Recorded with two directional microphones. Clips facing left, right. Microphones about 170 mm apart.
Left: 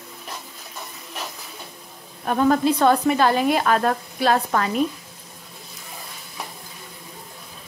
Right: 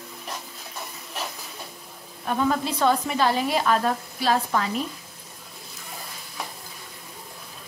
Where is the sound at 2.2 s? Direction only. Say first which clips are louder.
Left 6 dB; 50° left (ahead or behind).